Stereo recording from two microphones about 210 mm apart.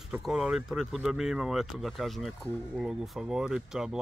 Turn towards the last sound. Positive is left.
turn(degrees=0)  # may be behind; listen again after turning